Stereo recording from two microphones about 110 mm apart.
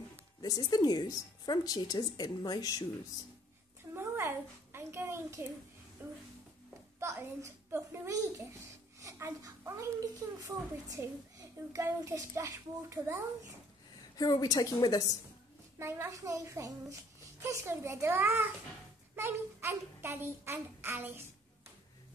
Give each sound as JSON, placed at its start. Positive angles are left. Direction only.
{"t": 0.4, "sound": "speech", "side_deg": 35}
{"t": 3.9, "sound": "a sound", "side_deg": -25}
{"t": 9.0, "sound": "a child's voice", "side_deg": -30}
{"t": 14.1, "sound": "speech", "side_deg": 35}
{"t": 15.8, "sound": "a child's voice", "side_deg": -25}